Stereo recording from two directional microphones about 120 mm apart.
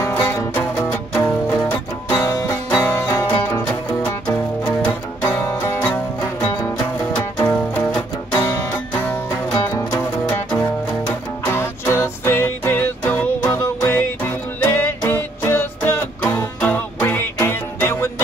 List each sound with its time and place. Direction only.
0.0 s music: 20° left (ahead or behind)
7.1 s music: 10° left (ahead or behind)
11.4 s music: 20° left (ahead or behind)